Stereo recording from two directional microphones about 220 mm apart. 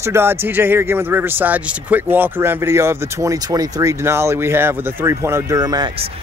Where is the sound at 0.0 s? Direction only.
10° right (ahead or behind).